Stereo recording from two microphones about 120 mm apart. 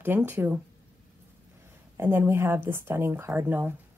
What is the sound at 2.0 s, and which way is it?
Speech, 20° right (ahead or behind).